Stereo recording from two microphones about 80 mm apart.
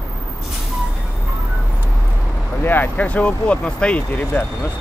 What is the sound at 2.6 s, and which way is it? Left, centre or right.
Speech, left.